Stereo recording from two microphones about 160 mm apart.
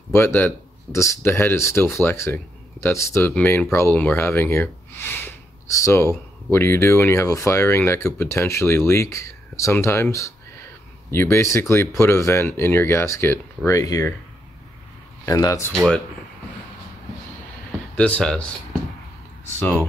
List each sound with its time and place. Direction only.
0.1 s speech: 15° left (ahead or behind)
11.1 s speech: 15° left (ahead or behind)
15.2 s speech: 20° left (ahead or behind)
15.7 s speech: 5° left (ahead or behind)
17.9 s speech: 5° left (ahead or behind)